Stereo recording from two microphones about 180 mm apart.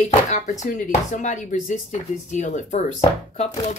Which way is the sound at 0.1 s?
45° left (ahead or behind).